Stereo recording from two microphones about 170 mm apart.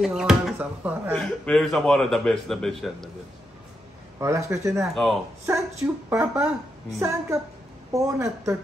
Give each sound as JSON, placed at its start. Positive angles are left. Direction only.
{"t": 0.0, "sound": "a sound", "side_deg": -5}
{"t": 1.1, "sound": "a man's voice", "side_deg": 5}
{"t": 4.2, "sound": "a woman's voice", "side_deg": -15}
{"t": 4.9, "sound": "a man's voice", "side_deg": 0}
{"t": 6.0, "sound": "a woman's voice", "side_deg": -10}